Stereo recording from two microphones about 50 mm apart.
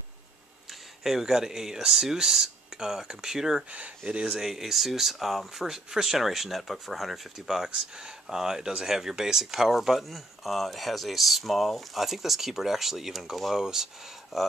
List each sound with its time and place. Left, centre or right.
0.7 s speech: centre
4.4 s speech: centre